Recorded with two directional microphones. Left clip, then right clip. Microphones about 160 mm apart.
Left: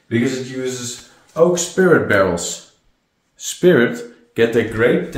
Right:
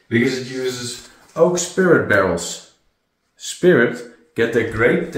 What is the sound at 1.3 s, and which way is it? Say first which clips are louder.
Speech: left 1 dB; 20° left (ahead or behind).